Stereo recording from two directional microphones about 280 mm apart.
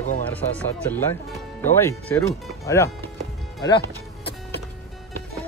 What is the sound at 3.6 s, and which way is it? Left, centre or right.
Music, centre.